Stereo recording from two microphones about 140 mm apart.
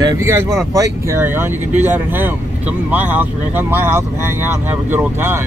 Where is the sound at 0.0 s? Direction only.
25° right (ahead or behind).